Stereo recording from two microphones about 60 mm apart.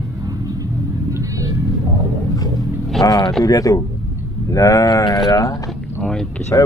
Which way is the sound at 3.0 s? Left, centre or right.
Left.